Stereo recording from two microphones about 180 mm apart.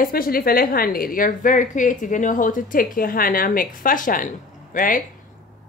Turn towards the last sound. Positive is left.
turn(degrees=50)  # may be behind; listen again after turning